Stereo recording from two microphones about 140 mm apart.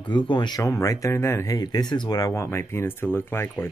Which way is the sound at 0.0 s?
35° left (ahead or behind).